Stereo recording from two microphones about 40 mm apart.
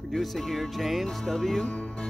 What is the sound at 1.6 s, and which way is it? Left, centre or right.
Speech, centre.